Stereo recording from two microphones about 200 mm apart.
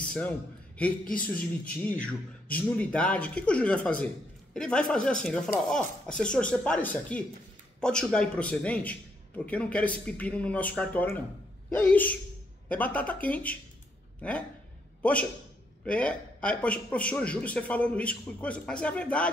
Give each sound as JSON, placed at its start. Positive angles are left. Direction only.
{"t": 0.0, "sound": "a sound", "side_deg": 5}
{"t": 0.8, "sound": "a man's voice", "side_deg": 5}
{"t": 15.0, "sound": "a man's voice", "side_deg": 5}